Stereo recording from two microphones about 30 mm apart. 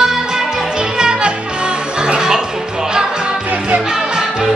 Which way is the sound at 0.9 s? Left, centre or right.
Right.